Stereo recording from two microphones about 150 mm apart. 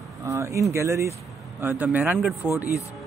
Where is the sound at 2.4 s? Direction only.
10° left (ahead or behind).